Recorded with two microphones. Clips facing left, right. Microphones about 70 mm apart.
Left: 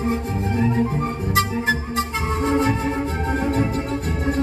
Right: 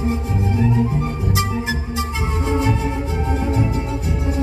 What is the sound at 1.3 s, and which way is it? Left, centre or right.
Music, left.